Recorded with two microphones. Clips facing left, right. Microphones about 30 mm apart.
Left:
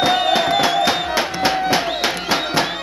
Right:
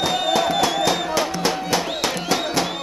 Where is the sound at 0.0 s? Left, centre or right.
Left.